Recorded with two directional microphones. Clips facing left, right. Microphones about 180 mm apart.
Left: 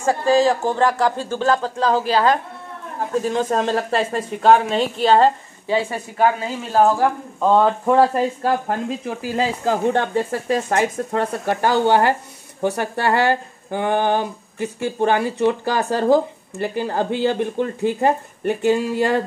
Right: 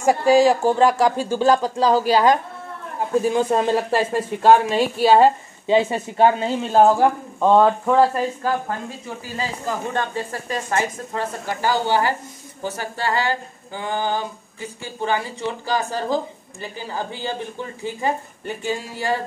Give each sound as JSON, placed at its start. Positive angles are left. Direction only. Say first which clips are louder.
{"t": 0.0, "sound": "speech", "louder": "right 2 dB", "side_deg": -15}
{"t": 5.7, "sound": "speech", "louder": "right 3 dB", "side_deg": -20}
{"t": 7.3, "sound": "speech", "louder": "right 1 dB", "side_deg": 0}
{"t": 7.8, "sound": "speech", "louder": "left 1 dB", "side_deg": 10}
{"t": 8.8, "sound": "speech", "louder": "left 7 dB", "side_deg": 90}